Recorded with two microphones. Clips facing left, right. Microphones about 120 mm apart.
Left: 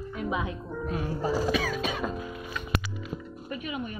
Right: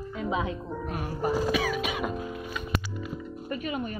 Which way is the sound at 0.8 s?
65° right (ahead or behind).